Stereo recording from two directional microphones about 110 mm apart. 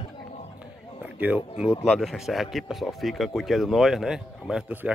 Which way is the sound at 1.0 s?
15° right (ahead or behind).